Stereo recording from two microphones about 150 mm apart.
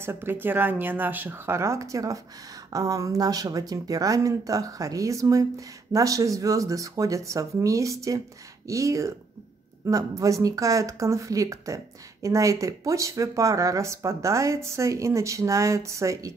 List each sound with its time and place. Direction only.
0.0 s speech: 15° right (ahead or behind)